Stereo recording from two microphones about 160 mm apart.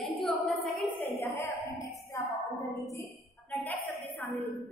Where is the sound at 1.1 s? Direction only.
15° left (ahead or behind).